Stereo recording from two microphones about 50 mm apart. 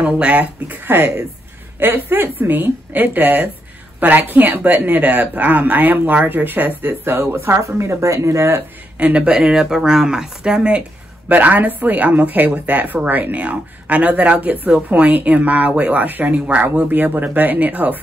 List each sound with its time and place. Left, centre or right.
0.0 s a woman's voice: right
2.9 s speech: right
6.8 s speech: right
8.9 s speech: right
9.5 s speech: centre
11.2 s speech: right